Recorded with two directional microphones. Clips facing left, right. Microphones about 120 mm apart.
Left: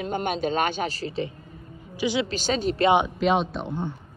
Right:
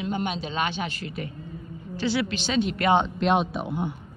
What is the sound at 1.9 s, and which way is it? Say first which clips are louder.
Speech: left 1 dB; 15° left (ahead or behind).